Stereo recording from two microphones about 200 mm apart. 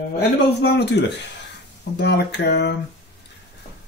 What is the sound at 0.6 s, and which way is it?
Mantra, 55° left (ahead or behind).